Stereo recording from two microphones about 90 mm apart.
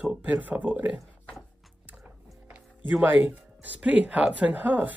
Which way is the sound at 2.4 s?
15° right (ahead or behind).